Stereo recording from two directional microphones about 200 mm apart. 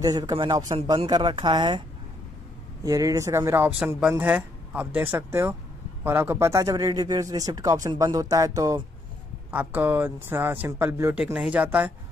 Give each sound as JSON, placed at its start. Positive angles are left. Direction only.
{"t": 0.0, "sound": "speech", "side_deg": -20}
{"t": 2.8, "sound": "speech", "side_deg": -15}